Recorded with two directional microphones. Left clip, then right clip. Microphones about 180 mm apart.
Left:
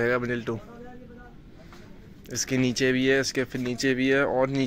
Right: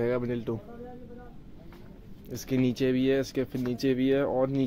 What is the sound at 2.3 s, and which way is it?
Speech, centre (ahead or behind).